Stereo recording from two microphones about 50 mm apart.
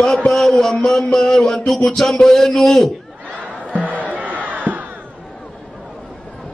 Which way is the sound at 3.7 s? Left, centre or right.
Right.